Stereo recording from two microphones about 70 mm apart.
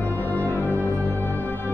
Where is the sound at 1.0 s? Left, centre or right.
Left.